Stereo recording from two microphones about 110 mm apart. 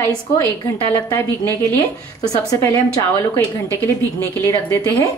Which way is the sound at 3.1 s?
20° left (ahead or behind).